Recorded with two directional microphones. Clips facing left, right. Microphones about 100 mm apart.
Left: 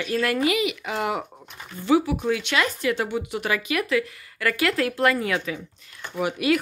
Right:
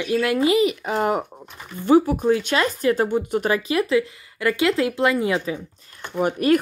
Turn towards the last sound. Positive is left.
turn(degrees=-45)  # may be behind; listen again after turning